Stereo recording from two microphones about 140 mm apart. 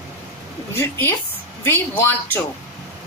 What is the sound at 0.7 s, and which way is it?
Speech, 15° left (ahead or behind).